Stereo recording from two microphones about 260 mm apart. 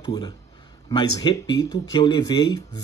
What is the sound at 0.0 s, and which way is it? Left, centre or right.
A man's voice, centre.